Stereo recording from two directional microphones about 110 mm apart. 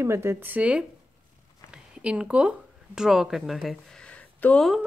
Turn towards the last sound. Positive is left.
turn(degrees=10)  # may be behind; listen again after turning